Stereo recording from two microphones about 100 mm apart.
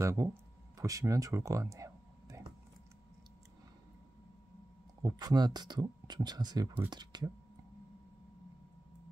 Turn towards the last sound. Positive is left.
turn(degrees=-45)  # may be behind; listen again after turning